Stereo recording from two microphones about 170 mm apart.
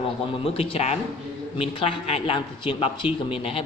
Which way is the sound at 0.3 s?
30° left (ahead or behind).